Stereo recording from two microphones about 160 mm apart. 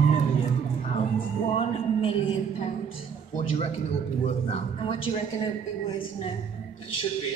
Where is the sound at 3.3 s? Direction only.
40° left (ahead or behind).